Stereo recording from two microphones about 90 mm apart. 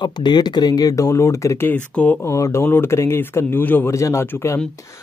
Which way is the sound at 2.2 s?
35° left (ahead or behind).